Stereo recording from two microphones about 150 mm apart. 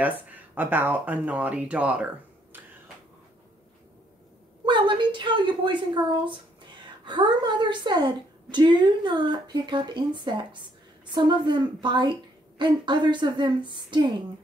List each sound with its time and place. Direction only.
0.0 s speech: 10° right (ahead or behind)
4.6 s a woman's voice: 30° right (ahead or behind)